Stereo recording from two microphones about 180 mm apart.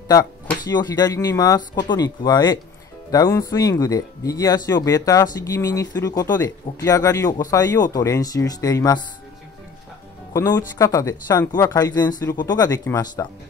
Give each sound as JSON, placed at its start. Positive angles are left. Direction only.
{"t": 0.7, "sound": "speech", "side_deg": 20}
{"t": 10.3, "sound": "speech", "side_deg": 20}